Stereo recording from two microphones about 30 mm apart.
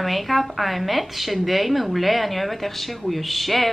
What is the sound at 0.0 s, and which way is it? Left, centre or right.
Speech, centre.